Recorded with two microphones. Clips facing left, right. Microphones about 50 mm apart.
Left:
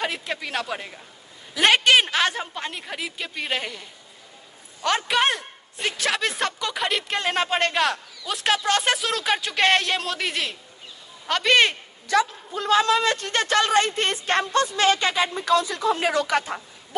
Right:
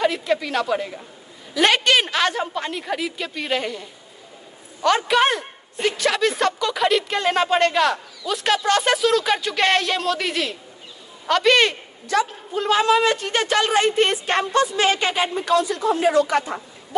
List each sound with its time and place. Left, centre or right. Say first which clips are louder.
0.0 s a woman's voice: right 7 dB; centre
4.8 s a woman's voice: right 4 dB; centre
12.6 s speech: right 2 dB; right
16.1 s speech: right 5 dB; left
16.3 s a woman's voice: right 2 dB; centre